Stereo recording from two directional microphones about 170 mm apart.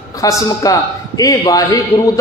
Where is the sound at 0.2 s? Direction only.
20° left (ahead or behind).